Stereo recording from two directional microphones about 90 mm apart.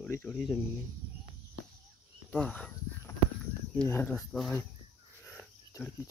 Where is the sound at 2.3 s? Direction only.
15° left (ahead or behind).